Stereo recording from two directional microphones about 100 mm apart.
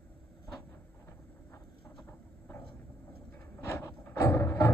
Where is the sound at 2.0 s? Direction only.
20° left (ahead or behind).